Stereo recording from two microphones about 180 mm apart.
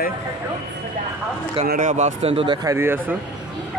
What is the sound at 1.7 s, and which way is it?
Speech, 45° right (ahead or behind).